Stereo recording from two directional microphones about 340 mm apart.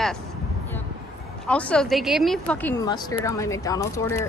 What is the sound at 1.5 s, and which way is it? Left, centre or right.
A woman's voice, centre.